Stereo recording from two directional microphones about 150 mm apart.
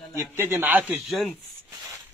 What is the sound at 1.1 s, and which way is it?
Speech, centre (ahead or behind).